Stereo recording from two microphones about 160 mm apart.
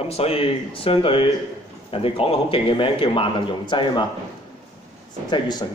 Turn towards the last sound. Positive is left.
turn(degrees=25)  # may be behind; listen again after turning